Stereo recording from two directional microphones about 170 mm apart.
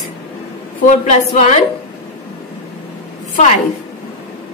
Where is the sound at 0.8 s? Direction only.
45° left (ahead or behind).